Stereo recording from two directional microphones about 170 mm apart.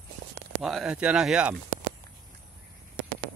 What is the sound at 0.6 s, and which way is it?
Speech, 5° right (ahead or behind).